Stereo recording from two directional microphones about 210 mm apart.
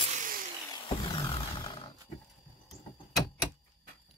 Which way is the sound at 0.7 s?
20° left (ahead or behind).